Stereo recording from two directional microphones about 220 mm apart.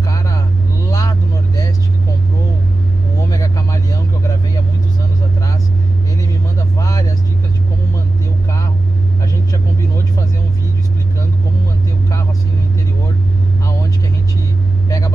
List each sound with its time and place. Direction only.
0.0 s vehicle: 15° left (ahead or behind)
3.3 s vehicle: 15° left (ahead or behind)
6.8 s vehicle: 15° left (ahead or behind)
14.9 s vehicle: 15° left (ahead or behind)